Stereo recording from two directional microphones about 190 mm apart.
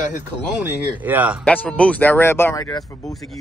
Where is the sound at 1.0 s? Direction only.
10° right (ahead or behind).